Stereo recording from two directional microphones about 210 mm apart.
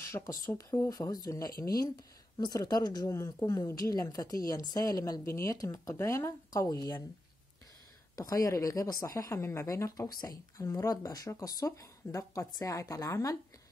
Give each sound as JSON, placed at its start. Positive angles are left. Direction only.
{"t": 0.3, "sound": "speech", "side_deg": 15}
{"t": 8.2, "sound": "speech", "side_deg": 15}